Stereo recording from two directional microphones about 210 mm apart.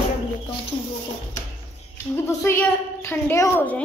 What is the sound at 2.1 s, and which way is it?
A woman's voice, 10° left (ahead or behind).